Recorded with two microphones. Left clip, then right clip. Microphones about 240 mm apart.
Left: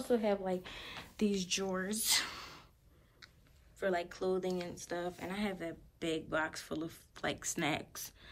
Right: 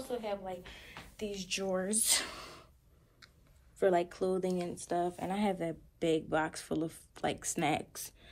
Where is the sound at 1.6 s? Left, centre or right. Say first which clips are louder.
Right 3 dB; centre.